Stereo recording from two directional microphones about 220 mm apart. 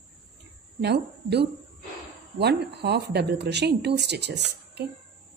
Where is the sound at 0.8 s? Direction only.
50° right (ahead or behind).